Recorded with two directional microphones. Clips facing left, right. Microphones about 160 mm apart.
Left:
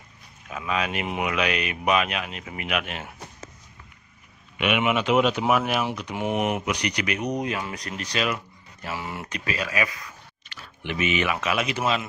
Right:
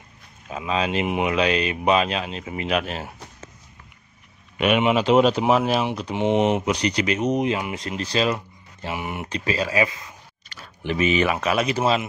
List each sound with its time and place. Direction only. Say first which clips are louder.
0.5 s speech: right 3 dB; 30° right (ahead or behind)
4.6 s speech: right 4 dB; 35° right (ahead or behind)
8.8 s speech: right 3 dB; 20° right (ahead or behind)
10.5 s a sound: right 5 dB; 40° right (ahead or behind)
11.4 s speech: right 4 dB; 35° right (ahead or behind)